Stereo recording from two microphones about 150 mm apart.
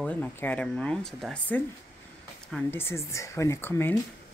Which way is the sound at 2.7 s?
15° left (ahead or behind).